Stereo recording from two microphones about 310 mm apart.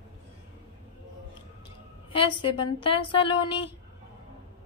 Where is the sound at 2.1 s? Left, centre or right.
Centre.